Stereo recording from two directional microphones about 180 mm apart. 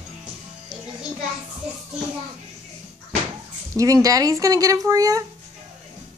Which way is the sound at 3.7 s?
20° right (ahead or behind).